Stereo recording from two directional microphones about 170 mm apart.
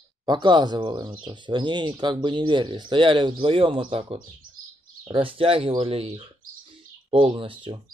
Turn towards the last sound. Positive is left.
turn(degrees=-30)  # may be behind; listen again after turning